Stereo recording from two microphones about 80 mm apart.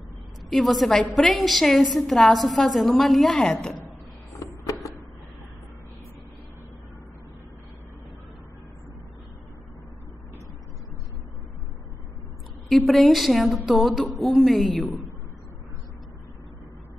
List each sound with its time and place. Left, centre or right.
0.5 s a woman's voice: centre
4.4 s a sound: left
12.6 s a woman's voice: centre